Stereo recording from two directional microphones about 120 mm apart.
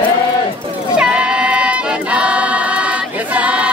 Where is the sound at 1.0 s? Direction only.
10° right (ahead or behind).